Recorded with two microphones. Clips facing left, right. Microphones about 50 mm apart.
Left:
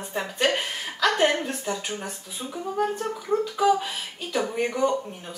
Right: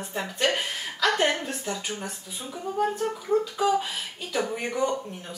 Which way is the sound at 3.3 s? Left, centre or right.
Centre.